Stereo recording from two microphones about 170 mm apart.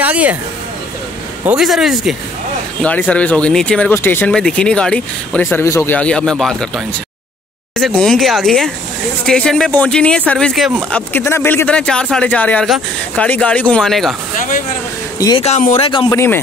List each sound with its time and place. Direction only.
0.0 s speech: 10° right (ahead or behind)
1.4 s speech: 5° right (ahead or behind)
2.8 s speech: 10° left (ahead or behind)
7.7 s speech: 5° left (ahead or behind)
15.1 s speech: 20° left (ahead or behind)
15.4 s speech: 40° left (ahead or behind)
15.7 s speech: 30° left (ahead or behind)
16.1 s speech: 15° left (ahead or behind)